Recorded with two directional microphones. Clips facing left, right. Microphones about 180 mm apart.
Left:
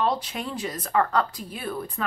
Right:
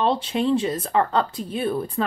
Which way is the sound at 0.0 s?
25° right (ahead or behind).